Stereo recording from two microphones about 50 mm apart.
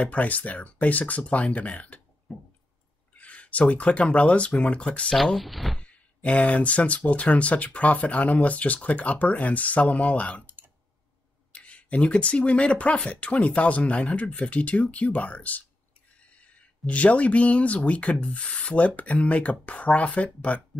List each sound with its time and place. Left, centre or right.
0.0 s speech: left
3.2 s speech: left
5.1 s speech: centre
5.8 s speech: left
11.5 s speech: left